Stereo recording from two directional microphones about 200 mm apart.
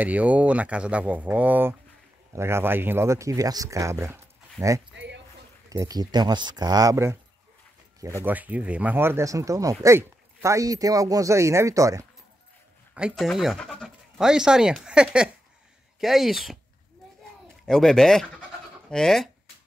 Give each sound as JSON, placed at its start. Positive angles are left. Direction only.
{"t": 0.0, "sound": "speech", "side_deg": -5}
{"t": 4.9, "sound": "a sound", "side_deg": -60}
{"t": 5.7, "sound": "speech", "side_deg": -15}
{"t": 12.9, "sound": "speech", "side_deg": -5}
{"t": 17.6, "sound": "speech", "side_deg": 0}